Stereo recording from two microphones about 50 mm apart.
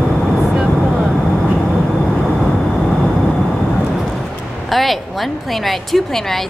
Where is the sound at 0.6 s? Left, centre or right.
Centre.